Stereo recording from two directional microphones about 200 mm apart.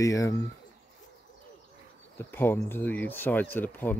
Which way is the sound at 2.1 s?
10° left (ahead or behind).